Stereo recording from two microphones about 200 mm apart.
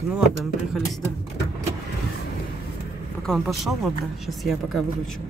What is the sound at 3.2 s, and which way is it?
Speech, centre (ahead or behind).